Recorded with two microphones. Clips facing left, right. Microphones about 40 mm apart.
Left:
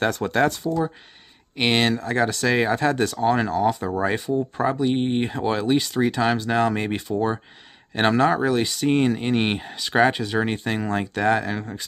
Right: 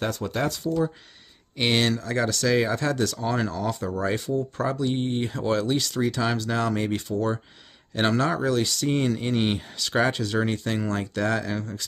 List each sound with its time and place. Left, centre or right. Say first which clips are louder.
0.0 s speech: left 6 dB; left
1.6 s speech: left 3 dB; left